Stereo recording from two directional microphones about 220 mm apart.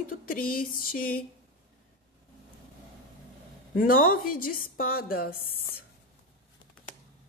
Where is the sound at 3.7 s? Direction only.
40° left (ahead or behind).